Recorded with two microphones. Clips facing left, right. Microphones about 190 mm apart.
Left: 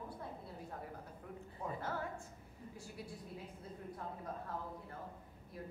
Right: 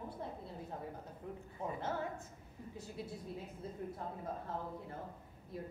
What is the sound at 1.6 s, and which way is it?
Speech, 20° right (ahead or behind).